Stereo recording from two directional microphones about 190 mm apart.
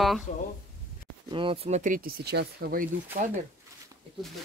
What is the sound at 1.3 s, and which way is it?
Speech, 30° right (ahead or behind).